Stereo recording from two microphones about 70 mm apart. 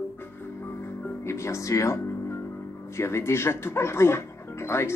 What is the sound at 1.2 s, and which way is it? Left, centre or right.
Speech, left.